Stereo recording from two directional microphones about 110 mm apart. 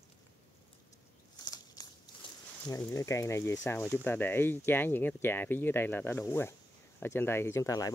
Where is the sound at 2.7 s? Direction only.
30° left (ahead or behind).